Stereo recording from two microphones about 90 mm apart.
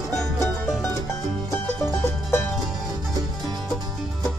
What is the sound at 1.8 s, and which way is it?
Music, 25° left (ahead or behind).